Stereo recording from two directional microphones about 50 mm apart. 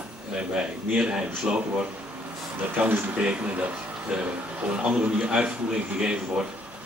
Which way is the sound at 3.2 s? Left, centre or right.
Right.